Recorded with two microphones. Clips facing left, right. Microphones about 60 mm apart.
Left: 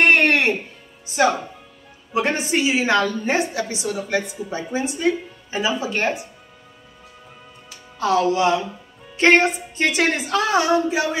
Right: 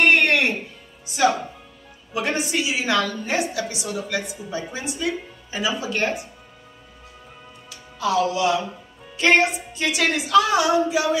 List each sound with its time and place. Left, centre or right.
0.1 s music: left
1.0 s a woman's voice: left
7.7 s a woman's voice: left